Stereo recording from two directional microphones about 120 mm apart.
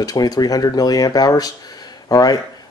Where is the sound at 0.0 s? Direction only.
35° left (ahead or behind).